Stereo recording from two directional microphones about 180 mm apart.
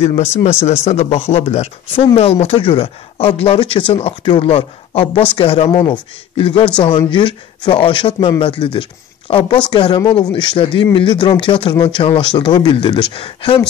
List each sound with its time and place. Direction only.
0.0 s speech: 35° left (ahead or behind)